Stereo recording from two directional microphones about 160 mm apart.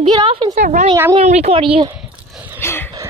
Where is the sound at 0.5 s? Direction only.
50° right (ahead or behind); by 1.9 s 35° right (ahead or behind).